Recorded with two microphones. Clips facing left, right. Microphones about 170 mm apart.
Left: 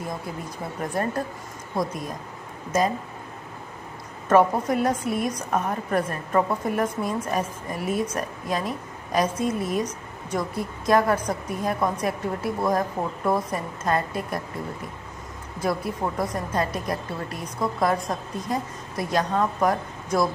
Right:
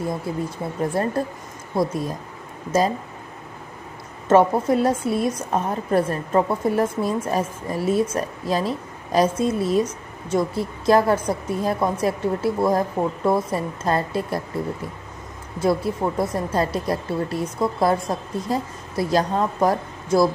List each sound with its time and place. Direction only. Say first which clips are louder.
1.0 s a woman's voice: right 3 dB; 30° right (ahead or behind)
4.3 s a woman's voice: right 3 dB; 25° right (ahead or behind)
15.6 s a woman's voice: right 5 dB; 30° right (ahead or behind)